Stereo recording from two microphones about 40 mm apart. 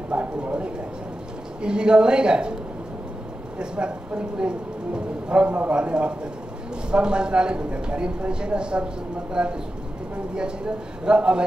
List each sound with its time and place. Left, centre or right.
0.1 s speech: right
3.5 s speech: right